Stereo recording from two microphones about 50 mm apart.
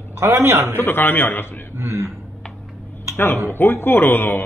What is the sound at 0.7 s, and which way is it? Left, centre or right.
Speech, left.